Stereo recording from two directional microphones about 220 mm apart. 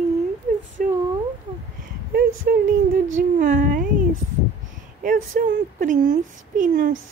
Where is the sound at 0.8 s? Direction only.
40° right (ahead or behind).